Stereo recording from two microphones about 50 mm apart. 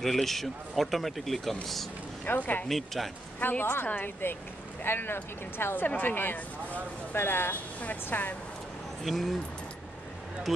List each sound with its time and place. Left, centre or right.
0.0 s speech: centre
2.2 s a woman's voice: left
2.7 s speech: centre
3.3 s a woman's voice: left
7.2 s speech: left
7.8 s a woman's voice: left
9.0 s speech: centre